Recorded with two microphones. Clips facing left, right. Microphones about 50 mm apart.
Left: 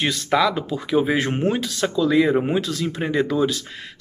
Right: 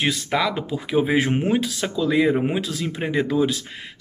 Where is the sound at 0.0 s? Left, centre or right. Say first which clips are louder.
Left 2 dB; centre.